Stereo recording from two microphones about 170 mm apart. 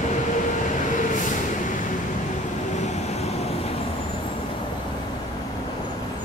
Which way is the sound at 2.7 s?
40° left (ahead or behind).